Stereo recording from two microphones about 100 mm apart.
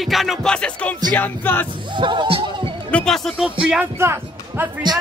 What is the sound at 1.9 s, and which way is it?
Speech, 55° right (ahead or behind).